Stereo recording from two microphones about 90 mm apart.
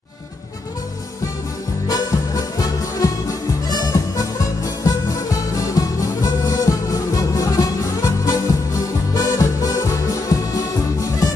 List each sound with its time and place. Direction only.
1.9 s music: 40° left (ahead or behind)